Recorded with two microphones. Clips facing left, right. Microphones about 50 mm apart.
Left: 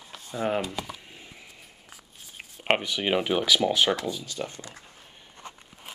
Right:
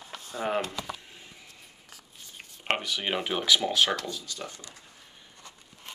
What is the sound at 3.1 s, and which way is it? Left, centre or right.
Speech, centre.